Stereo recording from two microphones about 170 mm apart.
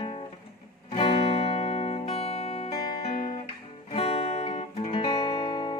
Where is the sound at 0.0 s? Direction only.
30° left (ahead or behind).